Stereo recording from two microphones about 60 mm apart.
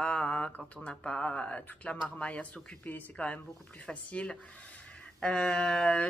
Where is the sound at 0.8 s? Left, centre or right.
Centre.